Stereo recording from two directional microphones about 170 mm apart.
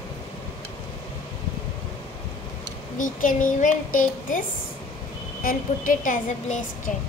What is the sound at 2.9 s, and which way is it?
A woman's voice, 50° left (ahead or behind).